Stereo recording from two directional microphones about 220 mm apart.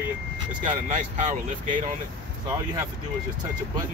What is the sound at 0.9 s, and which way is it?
Speech, 35° right (ahead or behind).